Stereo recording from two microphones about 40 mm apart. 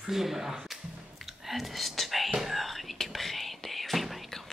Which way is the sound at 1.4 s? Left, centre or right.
Centre.